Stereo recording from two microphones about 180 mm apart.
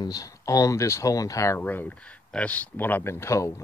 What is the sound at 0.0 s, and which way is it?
Speech, 20° left (ahead or behind).